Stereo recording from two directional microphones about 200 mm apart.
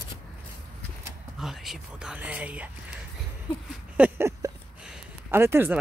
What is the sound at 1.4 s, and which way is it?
Speech, centre (ahead or behind).